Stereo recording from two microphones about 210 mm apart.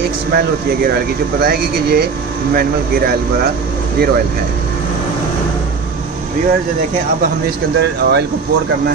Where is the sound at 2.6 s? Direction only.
45° right (ahead or behind).